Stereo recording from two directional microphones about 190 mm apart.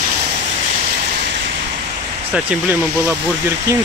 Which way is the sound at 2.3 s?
10° right (ahead or behind).